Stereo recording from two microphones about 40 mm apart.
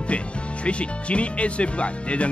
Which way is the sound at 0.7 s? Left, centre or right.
Left.